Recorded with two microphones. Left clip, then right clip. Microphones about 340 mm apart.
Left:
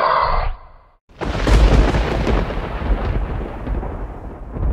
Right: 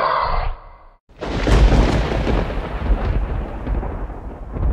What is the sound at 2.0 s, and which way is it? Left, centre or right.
Thunder, centre.